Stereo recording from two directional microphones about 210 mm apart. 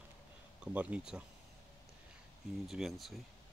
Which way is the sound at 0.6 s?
5° right (ahead or behind).